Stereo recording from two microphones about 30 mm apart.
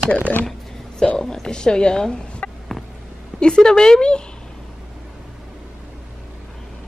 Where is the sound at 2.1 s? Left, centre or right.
Left.